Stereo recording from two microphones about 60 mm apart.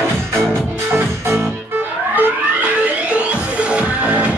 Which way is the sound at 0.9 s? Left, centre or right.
Right.